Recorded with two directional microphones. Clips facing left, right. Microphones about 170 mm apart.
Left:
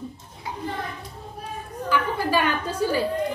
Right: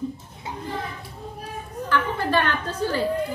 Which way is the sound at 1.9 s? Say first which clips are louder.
Even; 10° left (ahead or behind).